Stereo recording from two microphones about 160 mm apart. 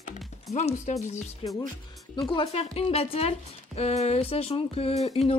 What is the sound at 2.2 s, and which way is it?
A woman's voice, 35° left (ahead or behind).